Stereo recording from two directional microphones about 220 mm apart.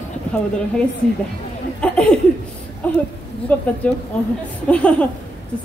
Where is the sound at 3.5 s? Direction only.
5° left (ahead or behind).